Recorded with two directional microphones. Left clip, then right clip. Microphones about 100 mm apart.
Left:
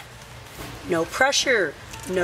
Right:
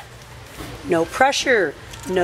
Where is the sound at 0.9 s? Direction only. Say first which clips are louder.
Right 3 dB; 5° right (ahead or behind).